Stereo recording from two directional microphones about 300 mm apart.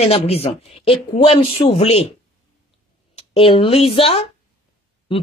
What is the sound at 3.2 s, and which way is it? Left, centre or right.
A woman's voice, centre.